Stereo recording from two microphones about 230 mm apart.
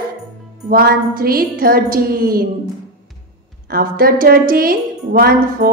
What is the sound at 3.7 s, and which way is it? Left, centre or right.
A woman's voice, right.